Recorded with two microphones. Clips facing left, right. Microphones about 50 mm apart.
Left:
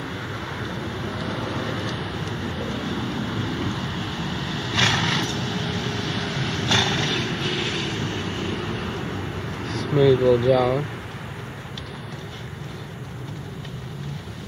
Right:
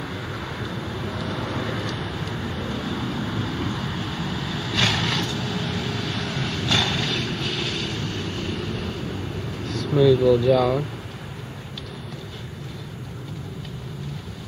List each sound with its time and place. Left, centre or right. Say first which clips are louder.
0.0 s vehicle: even; centre
9.6 s vehicle: even; centre
9.9 s speech: even; left